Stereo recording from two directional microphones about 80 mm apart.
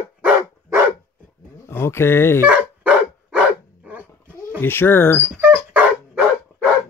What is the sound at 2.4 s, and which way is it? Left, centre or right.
Dog, centre.